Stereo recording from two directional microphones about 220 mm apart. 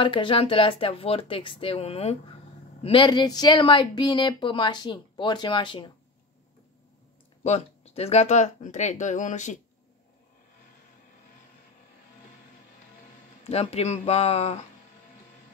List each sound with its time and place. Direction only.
0.0 s speech: 20° left (ahead or behind)
7.4 s speech: 30° left (ahead or behind)
13.4 s speech: 30° left (ahead or behind)